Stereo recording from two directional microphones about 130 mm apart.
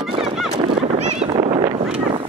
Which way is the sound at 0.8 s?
55° right (ahead or behind).